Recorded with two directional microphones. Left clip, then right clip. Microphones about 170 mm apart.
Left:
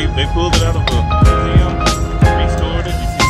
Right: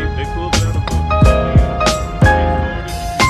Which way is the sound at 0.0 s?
45° left (ahead or behind).